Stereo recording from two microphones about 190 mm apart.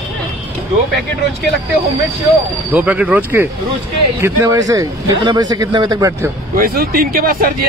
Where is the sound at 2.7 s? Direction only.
5° right (ahead or behind).